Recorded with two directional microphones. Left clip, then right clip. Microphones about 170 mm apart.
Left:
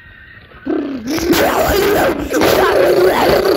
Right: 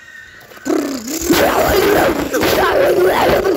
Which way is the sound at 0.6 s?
35° right (ahead or behind).